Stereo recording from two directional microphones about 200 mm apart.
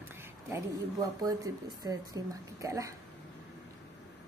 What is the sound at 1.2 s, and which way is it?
A woman's voice, 15° right (ahead or behind).